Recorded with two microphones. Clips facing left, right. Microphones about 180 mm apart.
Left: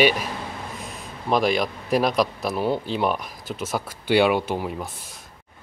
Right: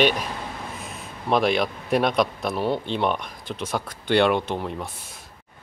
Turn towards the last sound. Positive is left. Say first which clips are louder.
# left 1 dB
turn(degrees=5)  # may be behind; listen again after turning